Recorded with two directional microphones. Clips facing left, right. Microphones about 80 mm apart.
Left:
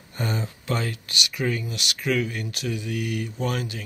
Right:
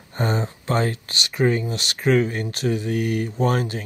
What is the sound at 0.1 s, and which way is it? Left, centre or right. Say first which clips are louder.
Speech: right 5 dB; right.